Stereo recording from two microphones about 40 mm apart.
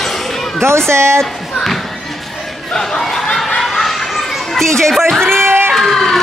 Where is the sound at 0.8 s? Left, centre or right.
Right.